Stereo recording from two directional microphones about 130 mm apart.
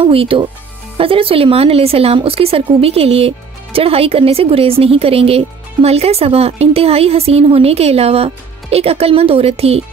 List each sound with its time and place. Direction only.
0.0 s speech: 45° right (ahead or behind)